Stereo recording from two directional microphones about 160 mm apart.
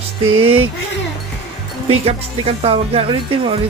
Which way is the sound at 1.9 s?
40° right (ahead or behind).